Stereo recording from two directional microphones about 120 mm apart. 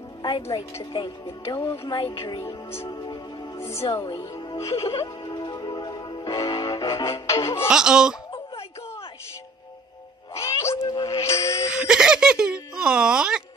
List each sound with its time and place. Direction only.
0.2 s music: 35° left (ahead or behind)
0.9 s speech: 40° left (ahead or behind)
1.9 s music: 45° left (ahead or behind)
2.4 s speech: 20° left (ahead or behind)
2.9 s music: 30° left (ahead or behind)
3.9 s speech: 45° left (ahead or behind)
4.8 s music: 30° left (ahead or behind)
7.7 s laughter: 5° right (ahead or behind)
10.3 s cat: 25° left (ahead or behind)
11.0 s music: 25° left (ahead or behind)
11.7 s a sound: 5° right (ahead or behind)